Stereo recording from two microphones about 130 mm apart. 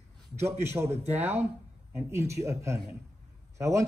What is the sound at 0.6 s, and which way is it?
A man's voice, 20° right (ahead or behind).